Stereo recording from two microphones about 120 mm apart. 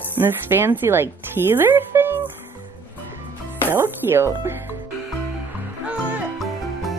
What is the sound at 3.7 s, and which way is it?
Speech, 20° right (ahead or behind).